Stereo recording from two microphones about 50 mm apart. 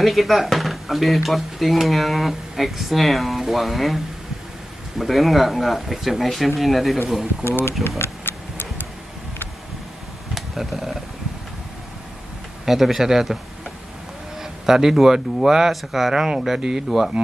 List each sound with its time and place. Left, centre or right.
0.0 s speech: centre
8.0 s a sound: left
10.3 s speech: centre
12.6 s speech: centre
14.4 s speech: centre